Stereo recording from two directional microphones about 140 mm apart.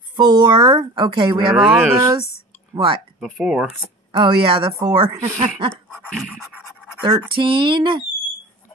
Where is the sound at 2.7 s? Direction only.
35° right (ahead or behind).